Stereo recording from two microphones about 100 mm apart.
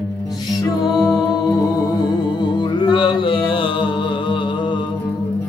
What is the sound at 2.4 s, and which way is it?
Music, 50° left (ahead or behind).